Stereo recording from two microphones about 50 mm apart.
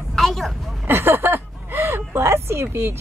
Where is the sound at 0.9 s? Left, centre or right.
Right.